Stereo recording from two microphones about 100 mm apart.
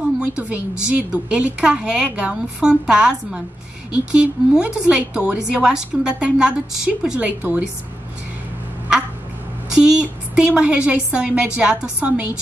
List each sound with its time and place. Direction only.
0.2 s a woman's voice: 15° right (ahead or behind)
7.2 s a woman's voice: 15° right (ahead or behind)
9.8 s a woman's voice: 10° right (ahead or behind)